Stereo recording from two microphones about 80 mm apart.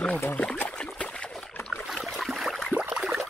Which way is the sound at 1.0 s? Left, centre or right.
Centre.